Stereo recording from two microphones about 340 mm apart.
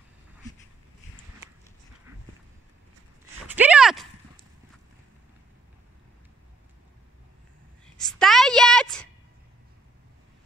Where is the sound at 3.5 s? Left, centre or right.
Centre.